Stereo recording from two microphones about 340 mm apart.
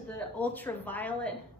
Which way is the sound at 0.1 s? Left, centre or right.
Centre.